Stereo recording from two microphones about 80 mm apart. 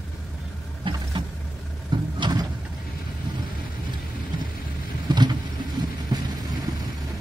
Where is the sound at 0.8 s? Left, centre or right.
Right.